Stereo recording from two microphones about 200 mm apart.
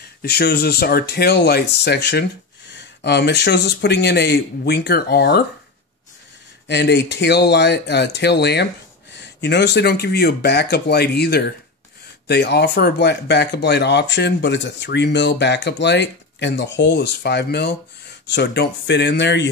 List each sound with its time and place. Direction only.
0.2 s speech: 50° left (ahead or behind)
6.7 s speech: 60° left (ahead or behind)